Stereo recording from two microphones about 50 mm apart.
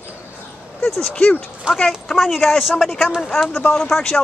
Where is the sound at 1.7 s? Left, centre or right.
Right.